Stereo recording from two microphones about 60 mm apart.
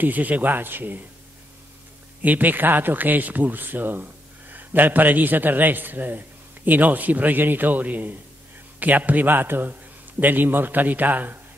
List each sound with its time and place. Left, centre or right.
0.0 s a man's voice: right
2.2 s a man's voice: right